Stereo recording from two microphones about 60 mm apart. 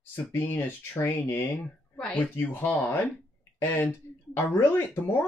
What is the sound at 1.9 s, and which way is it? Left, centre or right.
Speech, centre.